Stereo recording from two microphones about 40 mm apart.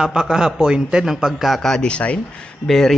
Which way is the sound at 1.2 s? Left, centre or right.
Centre.